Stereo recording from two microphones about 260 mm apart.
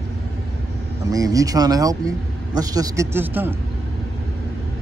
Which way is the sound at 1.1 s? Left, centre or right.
Centre.